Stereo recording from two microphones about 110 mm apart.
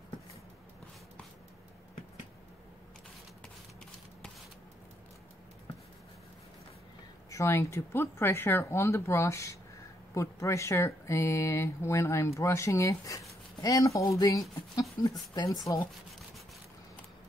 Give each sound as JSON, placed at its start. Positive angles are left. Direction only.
{"t": 7.2, "sound": "speech", "side_deg": 25}